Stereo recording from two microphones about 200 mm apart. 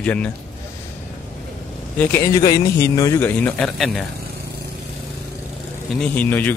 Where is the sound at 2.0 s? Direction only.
10° left (ahead or behind).